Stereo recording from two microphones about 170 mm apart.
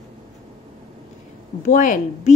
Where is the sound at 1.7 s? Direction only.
50° left (ahead or behind).